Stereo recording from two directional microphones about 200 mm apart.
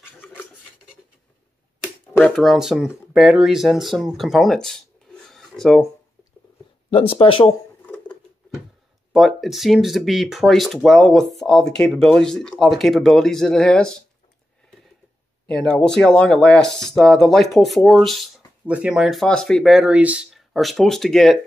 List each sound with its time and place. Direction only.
0.0 s filing: 10° left (ahead or behind)
2.1 s speech: 5° left (ahead or behind)
6.9 s speech: 25° left (ahead or behind)
9.1 s speech: centre (ahead or behind)
15.4 s speech: 5° left (ahead or behind)